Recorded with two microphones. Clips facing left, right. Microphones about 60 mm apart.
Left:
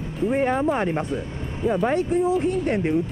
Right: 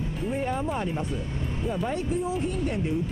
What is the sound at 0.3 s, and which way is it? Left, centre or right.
Speech, left.